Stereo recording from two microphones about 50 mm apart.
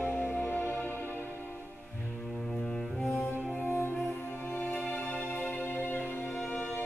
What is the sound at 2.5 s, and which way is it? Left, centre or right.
Cello, centre.